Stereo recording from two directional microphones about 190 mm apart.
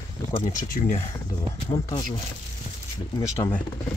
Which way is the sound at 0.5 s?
40° left (ahead or behind).